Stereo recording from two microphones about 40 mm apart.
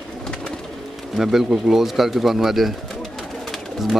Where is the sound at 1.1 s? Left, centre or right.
Centre.